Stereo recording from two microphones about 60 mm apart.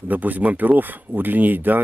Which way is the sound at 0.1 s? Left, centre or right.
Right.